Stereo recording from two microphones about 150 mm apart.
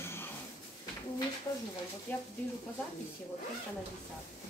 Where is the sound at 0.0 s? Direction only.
15° left (ahead or behind).